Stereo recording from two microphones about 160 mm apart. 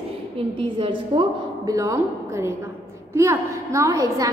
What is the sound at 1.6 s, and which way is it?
A woman's voice, 20° right (ahead or behind).